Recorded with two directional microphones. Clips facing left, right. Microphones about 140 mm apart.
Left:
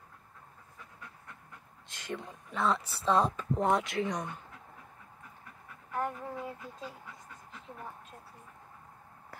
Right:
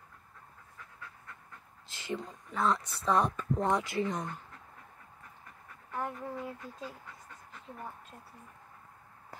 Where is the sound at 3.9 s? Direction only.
Centre (ahead or behind).